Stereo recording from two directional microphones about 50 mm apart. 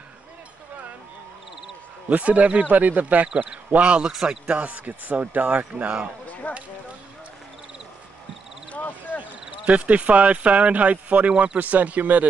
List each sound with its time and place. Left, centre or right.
2.0 s a man's voice: right
4.1 s speech: centre
4.5 s a man's voice: right
6.4 s speech: left
8.7 s a sound: left
9.7 s a man's voice: right